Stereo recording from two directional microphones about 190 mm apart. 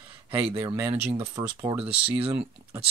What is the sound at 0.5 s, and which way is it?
Speech, 25° right (ahead or behind).